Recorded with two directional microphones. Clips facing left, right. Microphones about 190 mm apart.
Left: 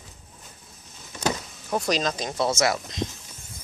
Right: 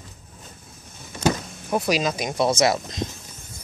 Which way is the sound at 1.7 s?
5° right (ahead or behind).